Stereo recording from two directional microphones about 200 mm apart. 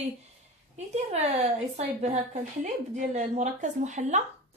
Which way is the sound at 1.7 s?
35° right (ahead or behind).